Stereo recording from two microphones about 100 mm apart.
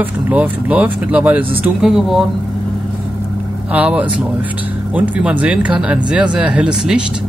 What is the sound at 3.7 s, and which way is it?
Speech, 15° right (ahead or behind).